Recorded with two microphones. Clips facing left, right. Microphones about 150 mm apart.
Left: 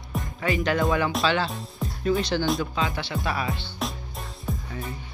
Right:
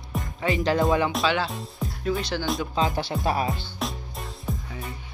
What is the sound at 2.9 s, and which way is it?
Speech, 40° right (ahead or behind).